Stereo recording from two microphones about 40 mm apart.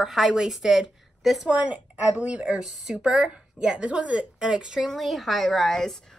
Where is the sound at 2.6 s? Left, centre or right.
Centre.